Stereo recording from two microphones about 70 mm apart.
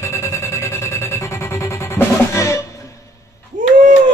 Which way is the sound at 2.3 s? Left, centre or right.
Left.